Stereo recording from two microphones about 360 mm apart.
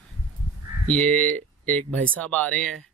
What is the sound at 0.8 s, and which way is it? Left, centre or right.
A man's voice, centre.